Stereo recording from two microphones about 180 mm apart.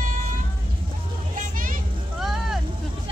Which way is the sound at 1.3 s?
50° right (ahead or behind).